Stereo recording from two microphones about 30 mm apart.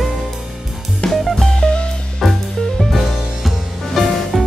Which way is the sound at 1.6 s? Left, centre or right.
Left.